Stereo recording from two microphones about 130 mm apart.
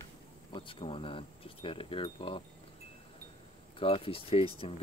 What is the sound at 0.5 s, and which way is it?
Speech, 40° left (ahead or behind).